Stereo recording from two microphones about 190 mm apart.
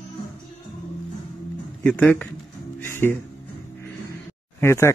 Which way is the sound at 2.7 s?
10° left (ahead or behind).